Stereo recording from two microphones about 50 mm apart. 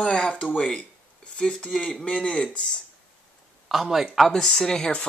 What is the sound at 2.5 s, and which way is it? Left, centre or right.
Speech, left.